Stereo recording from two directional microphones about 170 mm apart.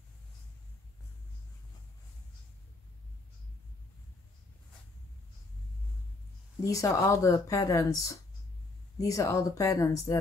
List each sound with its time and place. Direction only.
6.6 s speech: 20° left (ahead or behind)